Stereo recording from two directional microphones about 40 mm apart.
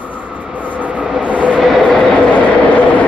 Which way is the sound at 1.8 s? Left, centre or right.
Left.